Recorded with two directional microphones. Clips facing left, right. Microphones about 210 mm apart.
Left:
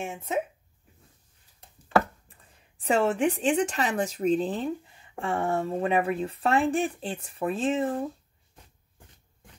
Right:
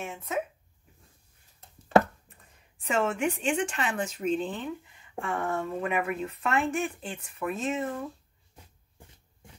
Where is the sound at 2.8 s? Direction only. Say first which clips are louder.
Left 4 dB; 35° left (ahead or behind).